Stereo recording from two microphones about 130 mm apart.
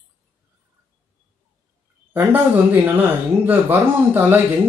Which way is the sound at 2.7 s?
15° right (ahead or behind).